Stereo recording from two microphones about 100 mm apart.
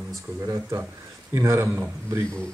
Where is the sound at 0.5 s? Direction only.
30° right (ahead or behind).